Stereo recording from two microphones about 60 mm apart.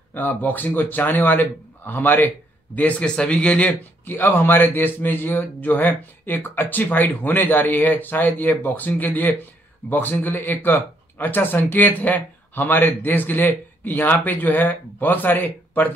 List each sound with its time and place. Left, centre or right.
0.1 s speech: left
4.0 s speech: left